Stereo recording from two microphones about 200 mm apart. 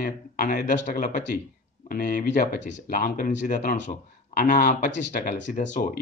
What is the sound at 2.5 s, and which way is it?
Speech, 60° left (ahead or behind).